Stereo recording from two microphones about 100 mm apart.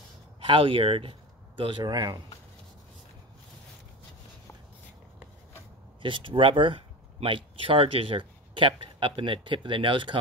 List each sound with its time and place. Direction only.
0.4 s speech: 60° right (ahead or behind)
1.6 s speech: 50° right (ahead or behind)
6.0 s speech: 60° right (ahead or behind)